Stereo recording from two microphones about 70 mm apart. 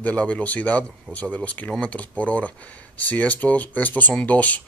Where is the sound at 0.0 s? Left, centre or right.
Centre.